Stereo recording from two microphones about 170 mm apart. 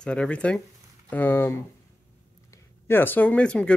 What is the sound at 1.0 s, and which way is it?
Speech, 10° left (ahead or behind).